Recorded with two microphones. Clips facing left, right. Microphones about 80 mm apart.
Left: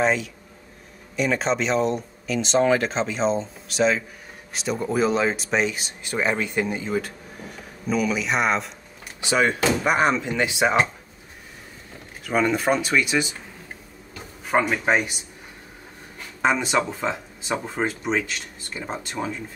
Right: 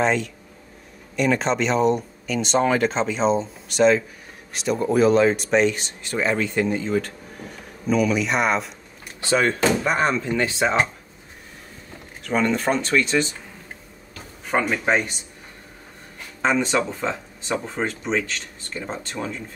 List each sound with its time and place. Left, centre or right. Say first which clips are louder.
0.0 s speech: right 1 dB; centre
9.2 s speech: right 1 dB; centre
12.2 s speech: even; centre
14.4 s speech: left 1 dB; centre
16.3 s speech: right 1 dB; centre